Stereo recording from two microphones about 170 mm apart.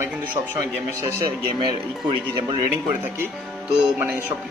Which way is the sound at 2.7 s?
10° right (ahead or behind).